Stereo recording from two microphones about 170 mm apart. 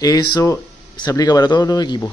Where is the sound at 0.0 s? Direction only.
25° left (ahead or behind).